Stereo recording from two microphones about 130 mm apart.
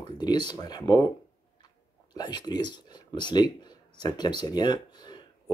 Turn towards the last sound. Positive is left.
turn(degrees=35)  # may be behind; listen again after turning